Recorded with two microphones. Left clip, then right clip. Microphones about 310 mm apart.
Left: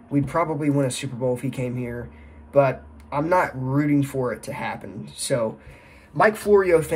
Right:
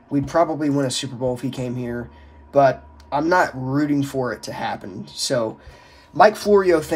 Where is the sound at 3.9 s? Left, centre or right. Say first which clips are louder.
Right 1 dB; centre.